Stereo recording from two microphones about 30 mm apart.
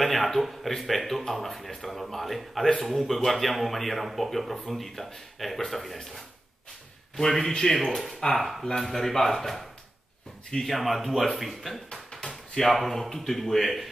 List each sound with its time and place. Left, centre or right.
0.0 s speech: centre
7.4 s speech: centre
8.4 s speech: centre
11.9 s a sound: left
12.6 s speech: centre